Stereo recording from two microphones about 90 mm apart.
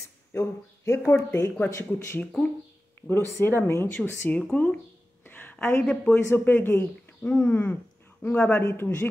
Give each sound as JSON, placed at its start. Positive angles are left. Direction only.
{"t": 0.3, "sound": "speech", "side_deg": 30}
{"t": 4.4, "sound": "speech", "side_deg": 15}
{"t": 5.2, "sound": "a sound", "side_deg": 20}
{"t": 6.0, "sound": "speech", "side_deg": 25}